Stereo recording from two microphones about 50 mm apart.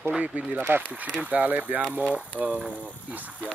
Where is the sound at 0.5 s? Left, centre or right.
Right.